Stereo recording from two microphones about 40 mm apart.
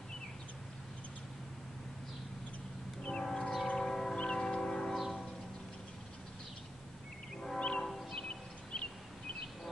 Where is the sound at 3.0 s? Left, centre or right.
Left.